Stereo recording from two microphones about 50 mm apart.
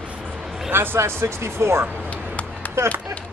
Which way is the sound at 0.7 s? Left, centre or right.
Right.